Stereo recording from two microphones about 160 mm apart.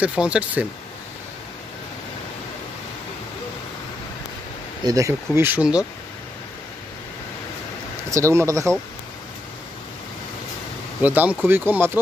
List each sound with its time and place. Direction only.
0.0 s speech: 5° right (ahead or behind)
4.8 s speech: 20° right (ahead or behind)
8.1 s speech: 20° right (ahead or behind)
11.0 s speech: 10° right (ahead or behind)